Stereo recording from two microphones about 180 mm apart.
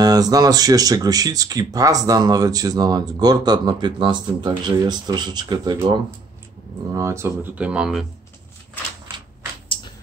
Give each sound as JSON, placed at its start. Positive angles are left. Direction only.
{"t": 0.0, "sound": "speech", "side_deg": -20}